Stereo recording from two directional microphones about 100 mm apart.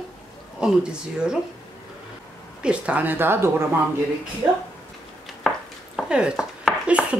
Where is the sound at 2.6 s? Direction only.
10° right (ahead or behind).